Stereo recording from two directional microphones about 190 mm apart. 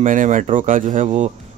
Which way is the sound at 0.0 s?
45° right (ahead or behind).